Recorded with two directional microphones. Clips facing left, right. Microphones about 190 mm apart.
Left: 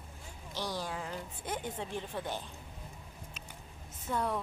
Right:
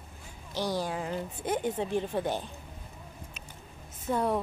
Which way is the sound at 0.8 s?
15° right (ahead or behind).